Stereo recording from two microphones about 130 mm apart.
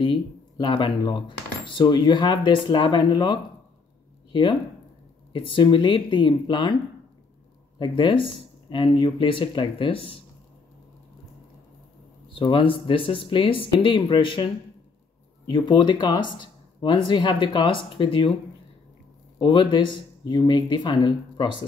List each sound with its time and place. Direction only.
0.0 s speech: 40° left (ahead or behind)
7.8 s speech: 35° left (ahead or behind)
12.3 s speech: 40° left (ahead or behind)
15.4 s speech: 35° left (ahead or behind)
19.3 s speech: 40° left (ahead or behind)